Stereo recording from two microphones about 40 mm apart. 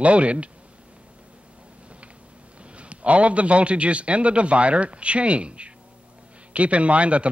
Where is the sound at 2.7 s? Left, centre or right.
Right.